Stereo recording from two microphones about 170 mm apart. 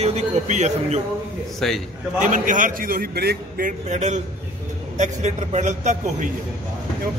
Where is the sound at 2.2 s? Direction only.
50° right (ahead or behind).